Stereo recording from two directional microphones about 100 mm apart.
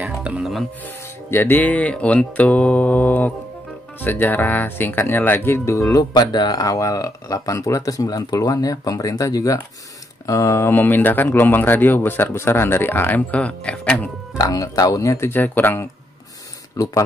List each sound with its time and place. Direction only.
0.0 s music: 15° right (ahead or behind)
0.4 s music: centre (ahead or behind)
1.3 s mantra: 20° left (ahead or behind)
4.0 s speech: 20° left (ahead or behind)
14.3 s speech: 35° left (ahead or behind)
16.7 s speech: 35° left (ahead or behind)